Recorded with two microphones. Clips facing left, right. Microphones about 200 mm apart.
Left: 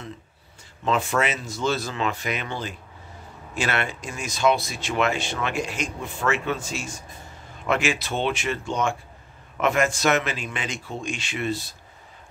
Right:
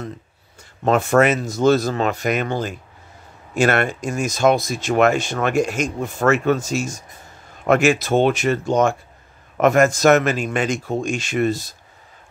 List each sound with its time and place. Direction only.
0.8 s speech: 50° right (ahead or behind)